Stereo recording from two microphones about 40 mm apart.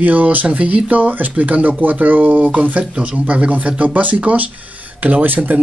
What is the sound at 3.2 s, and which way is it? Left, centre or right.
Speech, right.